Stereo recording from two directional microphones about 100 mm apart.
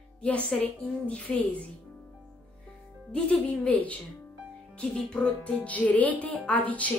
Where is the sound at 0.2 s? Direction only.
10° left (ahead or behind).